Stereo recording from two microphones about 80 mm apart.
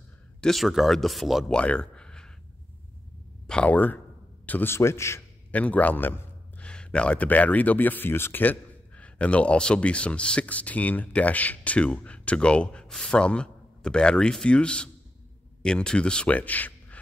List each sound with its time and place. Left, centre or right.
0.4 s speech: centre
1.5 s a sound: centre
3.4 s a man's voice: centre
4.7 s a man's voice: left
5.5 s speech: centre
6.6 s a man's voice: centre